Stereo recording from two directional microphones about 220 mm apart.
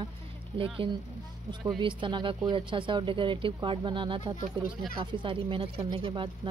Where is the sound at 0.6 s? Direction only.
25° right (ahead or behind).